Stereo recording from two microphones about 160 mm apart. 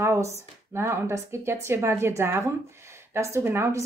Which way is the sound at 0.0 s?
20° right (ahead or behind).